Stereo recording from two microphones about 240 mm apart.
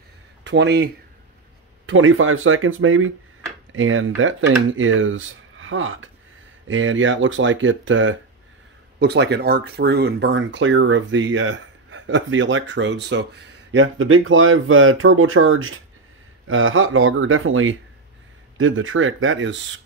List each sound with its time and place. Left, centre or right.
0.4 s speech: right
1.9 s speech: right